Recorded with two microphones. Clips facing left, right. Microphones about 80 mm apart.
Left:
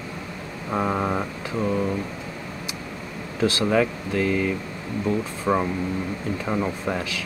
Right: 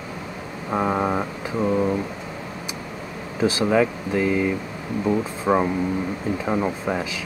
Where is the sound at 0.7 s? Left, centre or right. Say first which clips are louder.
Right 2 dB; centre.